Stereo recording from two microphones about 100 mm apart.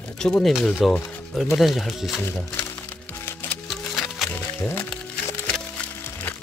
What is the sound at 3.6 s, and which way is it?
Music, 5° left (ahead or behind).